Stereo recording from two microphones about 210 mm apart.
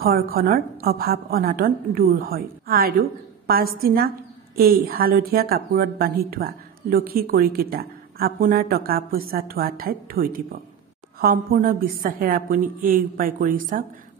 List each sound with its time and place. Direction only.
0.0 s a woman's voice: 45° right (ahead or behind)